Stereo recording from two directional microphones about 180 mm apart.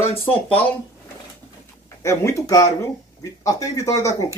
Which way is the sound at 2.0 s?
15° left (ahead or behind).